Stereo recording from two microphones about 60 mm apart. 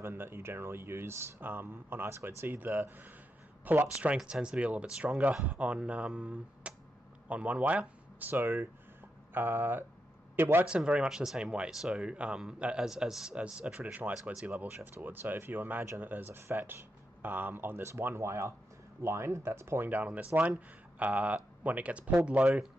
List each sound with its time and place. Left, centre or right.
0.0 s speech: right
2.2 s speech: right
4.2 s speech: centre
8.3 s a man's voice: right
10.8 s speech: centre; by 16.3 s right
16.3 s speech: right
19.9 s speech: right